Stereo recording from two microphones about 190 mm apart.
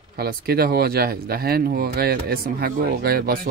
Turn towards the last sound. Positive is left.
turn(degrees=-50)  # may be behind; listen again after turning